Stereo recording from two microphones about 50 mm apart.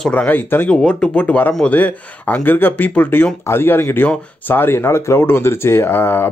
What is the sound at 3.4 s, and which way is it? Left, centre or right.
Speech, left.